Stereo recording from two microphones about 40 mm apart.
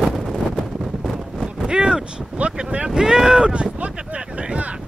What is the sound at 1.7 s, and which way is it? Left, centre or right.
Vehicle, right.